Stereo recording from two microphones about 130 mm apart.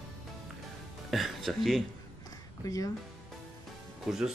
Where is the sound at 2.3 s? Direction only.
25° left (ahead or behind).